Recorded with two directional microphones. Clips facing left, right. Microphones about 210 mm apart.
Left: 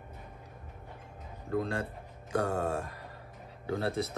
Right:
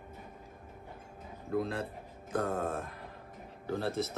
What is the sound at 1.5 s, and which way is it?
A man's voice, 5° right (ahead or behind).